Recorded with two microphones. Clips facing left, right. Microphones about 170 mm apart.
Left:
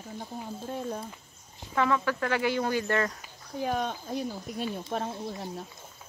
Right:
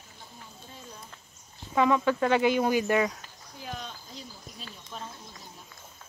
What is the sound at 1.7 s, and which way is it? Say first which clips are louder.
Speech: right 3 dB; 15° right (ahead or behind).